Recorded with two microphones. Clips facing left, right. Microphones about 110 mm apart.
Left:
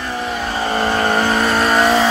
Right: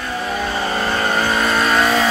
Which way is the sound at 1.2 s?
15° left (ahead or behind).